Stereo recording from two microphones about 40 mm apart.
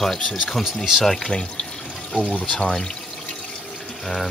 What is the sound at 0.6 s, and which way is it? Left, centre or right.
Speech, centre.